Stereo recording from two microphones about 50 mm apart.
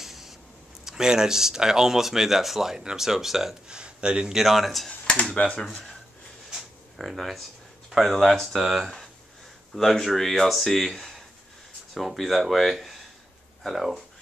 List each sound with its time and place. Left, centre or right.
0.0 s a sound: centre
0.8 s speech: centre
3.6 s speech: centre
4.3 s speech: centre
5.3 s speech: centre
7.0 s speech: centre